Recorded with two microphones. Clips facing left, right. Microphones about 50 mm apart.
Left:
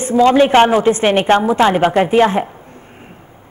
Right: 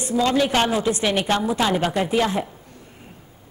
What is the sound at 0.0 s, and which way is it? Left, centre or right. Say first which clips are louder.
A woman's voice: left 9 dB; left.